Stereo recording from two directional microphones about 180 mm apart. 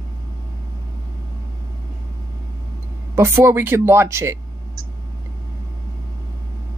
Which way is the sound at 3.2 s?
15° right (ahead or behind).